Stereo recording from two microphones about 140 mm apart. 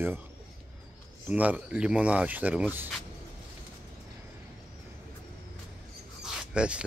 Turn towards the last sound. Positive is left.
turn(degrees=-10)  # may be behind; listen again after turning